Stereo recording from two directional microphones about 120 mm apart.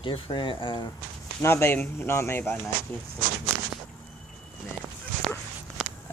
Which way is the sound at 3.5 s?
15° right (ahead or behind).